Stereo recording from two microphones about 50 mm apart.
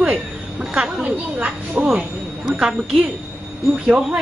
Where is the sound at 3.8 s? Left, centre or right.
Right.